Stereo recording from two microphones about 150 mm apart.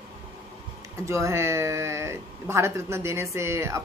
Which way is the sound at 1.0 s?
20° right (ahead or behind).